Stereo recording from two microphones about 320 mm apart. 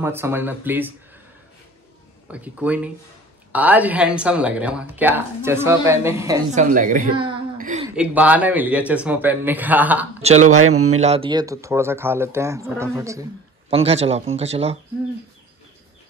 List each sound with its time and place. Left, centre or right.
0.0 s speech: centre
2.3 s speech: centre
6.5 s a woman's voice: right
7.9 s speech: centre
10.6 s speech: right
10.9 s speech: centre